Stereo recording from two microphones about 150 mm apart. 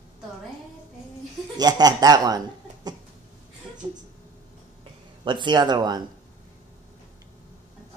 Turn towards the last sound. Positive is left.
turn(degrees=-30)  # may be behind; listen again after turning